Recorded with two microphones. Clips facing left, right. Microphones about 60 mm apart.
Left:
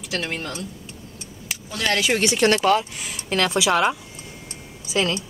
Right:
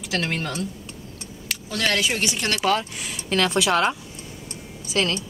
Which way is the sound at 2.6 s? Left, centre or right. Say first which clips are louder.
Left 3 dB; centre.